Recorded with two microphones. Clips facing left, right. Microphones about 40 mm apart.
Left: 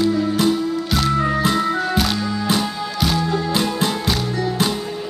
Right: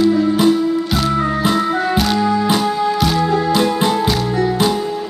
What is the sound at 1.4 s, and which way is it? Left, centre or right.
Music, centre.